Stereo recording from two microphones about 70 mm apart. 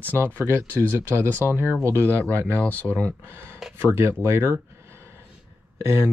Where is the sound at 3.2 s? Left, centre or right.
Right.